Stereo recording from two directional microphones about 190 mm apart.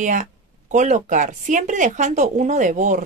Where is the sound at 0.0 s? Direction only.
40° right (ahead or behind).